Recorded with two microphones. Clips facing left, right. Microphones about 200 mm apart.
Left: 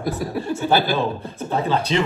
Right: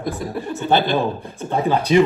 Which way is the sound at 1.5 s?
15° right (ahead or behind).